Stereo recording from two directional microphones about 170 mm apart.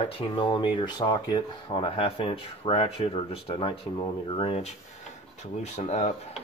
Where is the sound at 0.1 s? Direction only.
30° left (ahead or behind).